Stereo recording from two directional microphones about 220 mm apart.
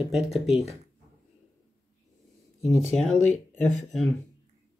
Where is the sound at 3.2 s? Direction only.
30° right (ahead or behind).